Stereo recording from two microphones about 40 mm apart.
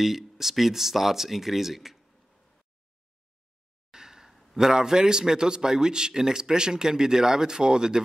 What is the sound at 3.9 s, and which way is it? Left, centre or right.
A man's voice, centre.